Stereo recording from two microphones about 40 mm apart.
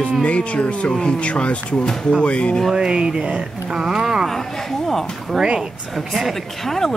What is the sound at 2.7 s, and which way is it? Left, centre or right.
Speech, right.